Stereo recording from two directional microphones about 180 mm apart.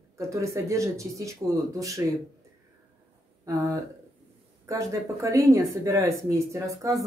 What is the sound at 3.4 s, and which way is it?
Speech, 20° right (ahead or behind).